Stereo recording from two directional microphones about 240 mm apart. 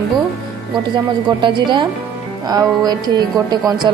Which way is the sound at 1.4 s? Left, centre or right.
Centre.